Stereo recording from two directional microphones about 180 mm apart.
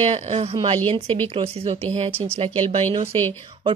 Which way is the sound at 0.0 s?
35° right (ahead or behind).